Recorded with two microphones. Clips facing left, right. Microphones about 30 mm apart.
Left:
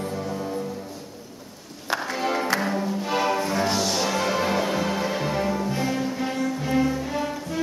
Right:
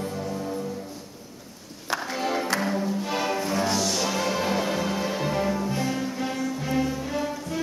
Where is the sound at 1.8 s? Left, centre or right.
Centre.